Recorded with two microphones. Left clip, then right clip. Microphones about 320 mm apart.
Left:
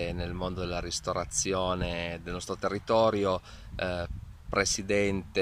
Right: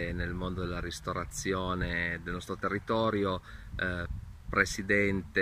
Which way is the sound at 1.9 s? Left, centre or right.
Left.